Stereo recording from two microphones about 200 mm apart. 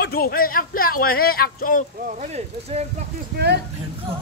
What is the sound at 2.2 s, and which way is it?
Speech, 35° right (ahead or behind).